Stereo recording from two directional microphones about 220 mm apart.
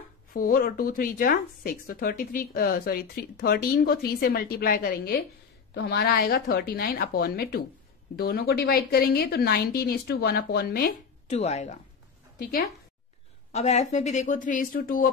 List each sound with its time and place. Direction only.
0.3 s a woman's voice: 40° left (ahead or behind)
11.2 s speech: 30° left (ahead or behind)
12.4 s a woman's voice: 40° left (ahead or behind)
13.5 s a woman's voice: 30° left (ahead or behind)